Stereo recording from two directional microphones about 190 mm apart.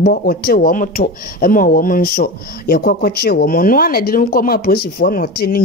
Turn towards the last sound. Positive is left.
turn(degrees=50)  # may be behind; listen again after turning